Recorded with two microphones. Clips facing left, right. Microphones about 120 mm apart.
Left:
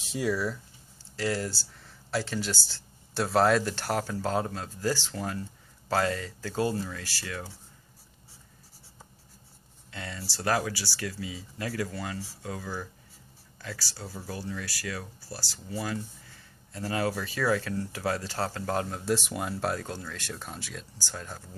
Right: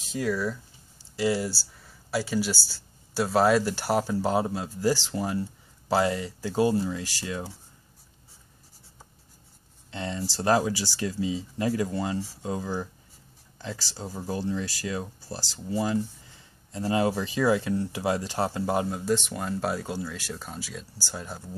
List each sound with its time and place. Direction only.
0.0 s speech: 5° left (ahead or behind)
1.1 s speech: 10° right (ahead or behind)
9.8 s speech: 25° right (ahead or behind); by 19.7 s 5° left (ahead or behind)
19.7 s speech: 5° right (ahead or behind)